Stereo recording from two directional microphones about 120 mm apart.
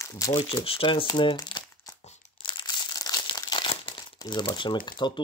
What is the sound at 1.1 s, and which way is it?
Crumpling, 35° left (ahead or behind).